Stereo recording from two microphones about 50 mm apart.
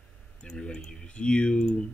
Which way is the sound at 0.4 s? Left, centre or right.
Centre.